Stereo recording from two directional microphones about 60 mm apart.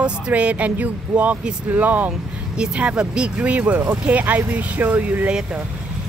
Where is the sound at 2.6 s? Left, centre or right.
Centre.